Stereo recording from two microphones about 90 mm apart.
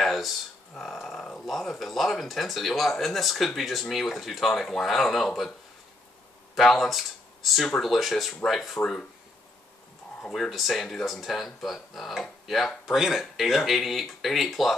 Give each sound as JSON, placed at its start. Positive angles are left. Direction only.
{"t": 0.0, "sound": "a sound", "side_deg": 0}
{"t": 0.7, "sound": "speech", "side_deg": 5}
{"t": 6.5, "sound": "speech", "side_deg": 0}
{"t": 10.2, "sound": "speech", "side_deg": 5}